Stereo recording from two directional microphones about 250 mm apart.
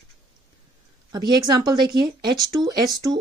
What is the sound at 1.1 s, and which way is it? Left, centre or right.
Speech, centre.